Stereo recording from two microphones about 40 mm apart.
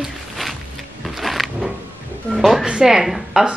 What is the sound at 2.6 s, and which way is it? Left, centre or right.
Speech, centre.